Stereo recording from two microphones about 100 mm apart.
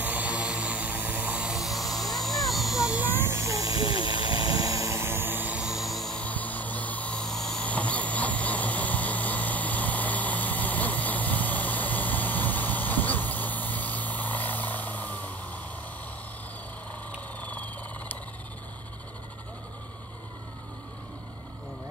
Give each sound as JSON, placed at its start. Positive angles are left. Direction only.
{"t": 0.0, "sound": "vehicle", "side_deg": -15}
{"t": 3.0, "sound": "helicopter", "side_deg": -20}
{"t": 5.6, "sound": "music", "side_deg": 0}
{"t": 6.2, "sound": "a sound", "side_deg": 15}
{"t": 17.4, "sound": "engine", "side_deg": 15}